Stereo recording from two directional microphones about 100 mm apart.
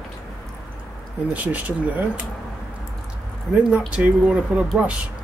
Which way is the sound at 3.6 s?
10° right (ahead or behind).